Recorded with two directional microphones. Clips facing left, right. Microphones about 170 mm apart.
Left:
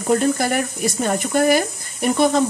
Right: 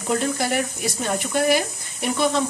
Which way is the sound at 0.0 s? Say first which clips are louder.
Left 5 dB; 45° left (ahead or behind).